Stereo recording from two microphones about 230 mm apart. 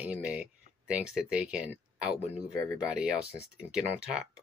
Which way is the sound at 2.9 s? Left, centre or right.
Centre.